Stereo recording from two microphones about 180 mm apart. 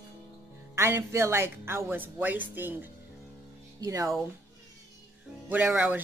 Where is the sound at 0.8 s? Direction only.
15° right (ahead or behind).